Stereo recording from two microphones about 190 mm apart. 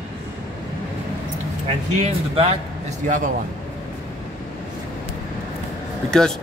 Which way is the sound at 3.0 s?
45° right (ahead or behind).